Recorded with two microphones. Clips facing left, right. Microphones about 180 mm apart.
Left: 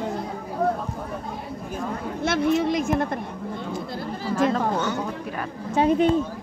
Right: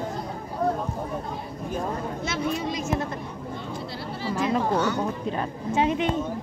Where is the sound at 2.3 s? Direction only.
55° left (ahead or behind).